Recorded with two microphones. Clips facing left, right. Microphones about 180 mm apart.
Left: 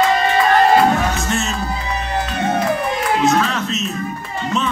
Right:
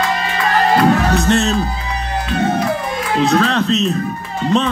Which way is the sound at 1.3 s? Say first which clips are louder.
Right 7 dB; 35° right (ahead or behind).